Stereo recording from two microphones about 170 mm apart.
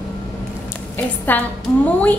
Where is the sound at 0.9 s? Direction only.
10° left (ahead or behind).